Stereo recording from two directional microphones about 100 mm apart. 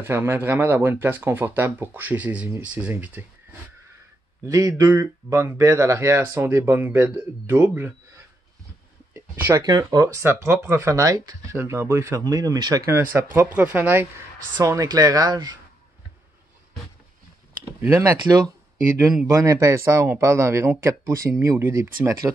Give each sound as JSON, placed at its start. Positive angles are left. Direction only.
{"t": 0.0, "sound": "speech", "side_deg": -20}
{"t": 4.5, "sound": "speech", "side_deg": -35}
{"t": 4.9, "sound": "speech", "side_deg": -25}
{"t": 9.1, "sound": "speech", "side_deg": -25}
{"t": 10.0, "sound": "speech", "side_deg": -25}
{"t": 12.8, "sound": "speech", "side_deg": -20}
{"t": 14.6, "sound": "speech", "side_deg": -35}
{"t": 17.7, "sound": "speech", "side_deg": -25}